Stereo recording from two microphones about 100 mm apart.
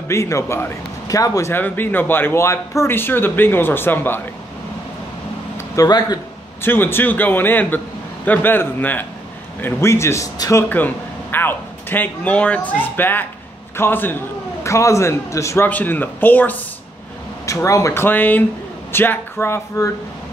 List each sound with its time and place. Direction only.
0.1 s a man's voice: 30° left (ahead or behind)
1.5 s speech: 20° left (ahead or behind)
5.8 s speech: 45° left (ahead or behind)
6.6 s speech: 20° left (ahead or behind)
11.3 s speech: 20° left (ahead or behind)
17.5 s speech: 30° left (ahead or behind)